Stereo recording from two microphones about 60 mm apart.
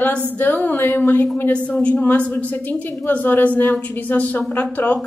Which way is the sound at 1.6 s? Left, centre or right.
Left.